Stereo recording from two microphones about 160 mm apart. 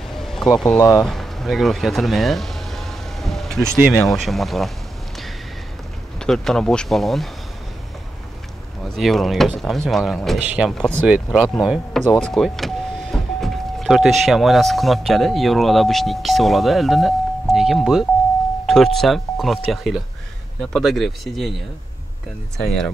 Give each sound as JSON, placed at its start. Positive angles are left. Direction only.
{"t": 0.1, "sound": "a sound", "side_deg": 0}
{"t": 0.7, "sound": "speech", "side_deg": 20}
{"t": 1.0, "sound": "a sound", "side_deg": 0}
{"t": 3.9, "sound": "speech", "side_deg": 0}
{"t": 6.1, "sound": "speech", "side_deg": 5}
{"t": 8.8, "sound": "speech", "side_deg": 0}